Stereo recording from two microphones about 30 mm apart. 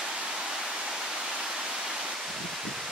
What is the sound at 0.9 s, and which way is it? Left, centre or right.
Waterfall, right.